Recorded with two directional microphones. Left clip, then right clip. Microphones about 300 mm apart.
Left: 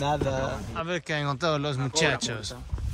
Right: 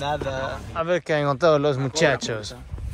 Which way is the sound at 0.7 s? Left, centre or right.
Centre.